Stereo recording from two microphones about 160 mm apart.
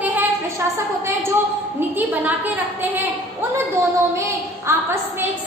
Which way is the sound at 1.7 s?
10° right (ahead or behind).